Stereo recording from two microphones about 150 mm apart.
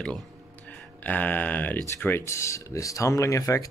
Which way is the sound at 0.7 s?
10° left (ahead or behind).